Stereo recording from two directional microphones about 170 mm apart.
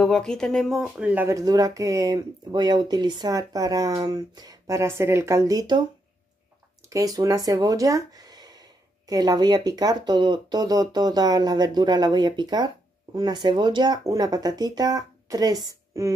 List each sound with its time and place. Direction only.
0.0 s speech: 5° left (ahead or behind); by 5.9 s 25° right (ahead or behind)
6.9 s speech: 20° right (ahead or behind)